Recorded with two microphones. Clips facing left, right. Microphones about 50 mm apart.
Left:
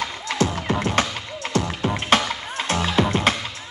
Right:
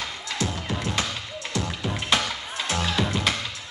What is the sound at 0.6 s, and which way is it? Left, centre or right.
Music, left.